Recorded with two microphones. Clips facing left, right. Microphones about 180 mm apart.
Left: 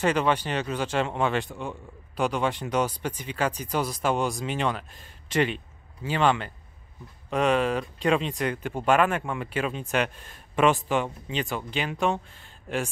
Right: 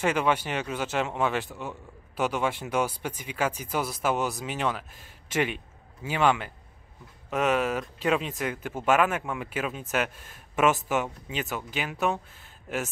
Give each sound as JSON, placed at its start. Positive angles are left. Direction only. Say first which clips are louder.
{"t": 0.0, "sound": "a man's voice", "louder": "left 1 dB", "side_deg": -10}